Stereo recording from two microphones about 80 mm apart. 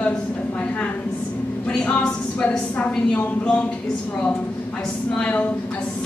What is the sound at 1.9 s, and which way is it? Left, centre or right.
A woman's voice, centre.